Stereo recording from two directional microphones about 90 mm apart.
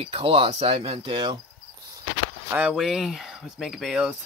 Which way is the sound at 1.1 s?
55° right (ahead or behind).